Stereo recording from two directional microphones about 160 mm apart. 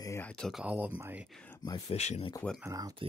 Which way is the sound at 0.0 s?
15° left (ahead or behind).